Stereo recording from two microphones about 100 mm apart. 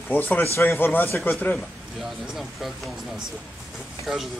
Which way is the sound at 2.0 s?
5° right (ahead or behind).